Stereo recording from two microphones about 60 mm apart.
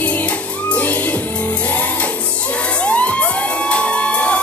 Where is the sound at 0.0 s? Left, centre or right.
Left.